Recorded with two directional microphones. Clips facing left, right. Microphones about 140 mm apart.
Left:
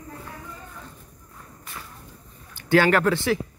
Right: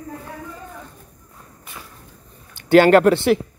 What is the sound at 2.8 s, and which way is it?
Speech, 25° right (ahead or behind).